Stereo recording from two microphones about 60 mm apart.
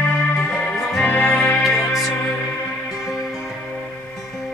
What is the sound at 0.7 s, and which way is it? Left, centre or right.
Music, centre.